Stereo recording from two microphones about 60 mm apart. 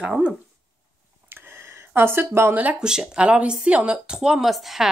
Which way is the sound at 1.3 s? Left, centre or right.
Right.